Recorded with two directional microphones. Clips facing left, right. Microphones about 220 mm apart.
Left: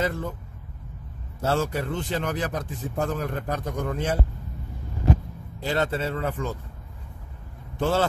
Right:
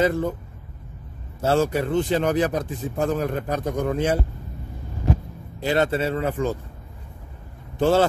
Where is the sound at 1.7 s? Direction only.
15° right (ahead or behind).